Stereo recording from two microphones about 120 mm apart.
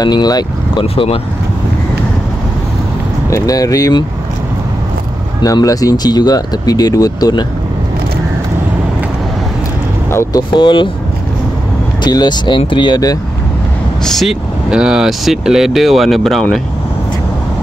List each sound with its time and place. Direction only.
0.0 s speech: 35° left (ahead or behind)
0.9 s speech: 50° left (ahead or behind)
3.3 s speech: 25° left (ahead or behind)
5.4 s speech: 30° left (ahead or behind)
10.5 s speech: 45° left (ahead or behind)
12.0 s speech: 35° left (ahead or behind)
14.0 s speech: centre (ahead or behind)